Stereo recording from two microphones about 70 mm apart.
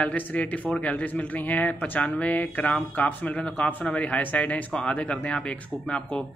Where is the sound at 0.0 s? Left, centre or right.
Centre.